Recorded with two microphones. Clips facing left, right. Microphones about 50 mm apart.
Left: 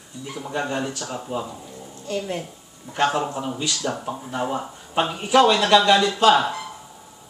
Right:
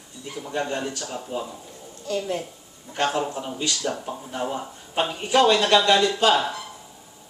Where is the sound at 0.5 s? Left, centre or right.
Centre.